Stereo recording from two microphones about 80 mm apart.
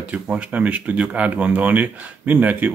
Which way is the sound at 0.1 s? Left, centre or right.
Centre.